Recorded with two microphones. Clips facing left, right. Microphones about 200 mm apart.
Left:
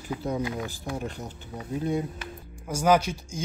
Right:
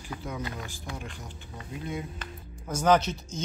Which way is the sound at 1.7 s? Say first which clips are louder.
Left 8 dB; 40° left (ahead or behind).